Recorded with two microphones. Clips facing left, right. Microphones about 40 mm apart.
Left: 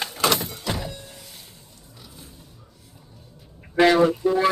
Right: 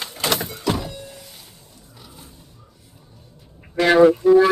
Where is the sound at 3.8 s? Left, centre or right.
Left.